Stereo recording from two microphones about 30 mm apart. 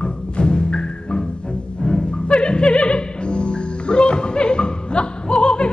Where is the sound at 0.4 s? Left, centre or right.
Left.